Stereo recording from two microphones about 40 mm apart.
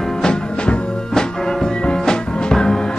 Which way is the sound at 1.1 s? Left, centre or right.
Centre.